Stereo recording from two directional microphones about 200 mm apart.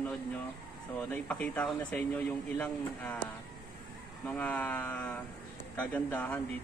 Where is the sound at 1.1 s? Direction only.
10° left (ahead or behind).